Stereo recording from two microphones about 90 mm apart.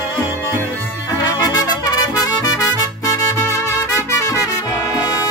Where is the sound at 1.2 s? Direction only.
45° left (ahead or behind).